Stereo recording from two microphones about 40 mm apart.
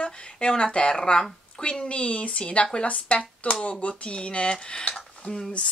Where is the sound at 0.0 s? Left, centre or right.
Left.